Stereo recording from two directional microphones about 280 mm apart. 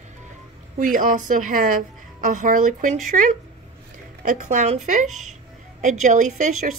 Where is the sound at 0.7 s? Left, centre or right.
Right.